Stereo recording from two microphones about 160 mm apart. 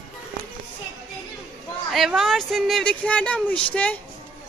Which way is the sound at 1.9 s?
Centre (ahead or behind).